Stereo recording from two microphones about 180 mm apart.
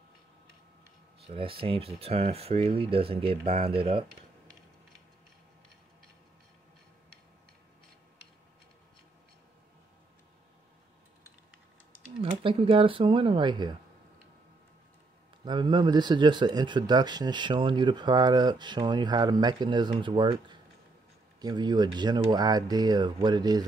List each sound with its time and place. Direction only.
1.2 s speech: 30° right (ahead or behind)
12.2 s speech: 30° right (ahead or behind)
15.4 s speech: 25° right (ahead or behind)